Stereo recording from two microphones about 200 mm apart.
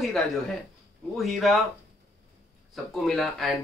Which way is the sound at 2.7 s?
Centre (ahead or behind).